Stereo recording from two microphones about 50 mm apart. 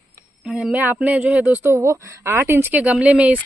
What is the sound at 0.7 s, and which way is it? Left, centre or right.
Speech, right.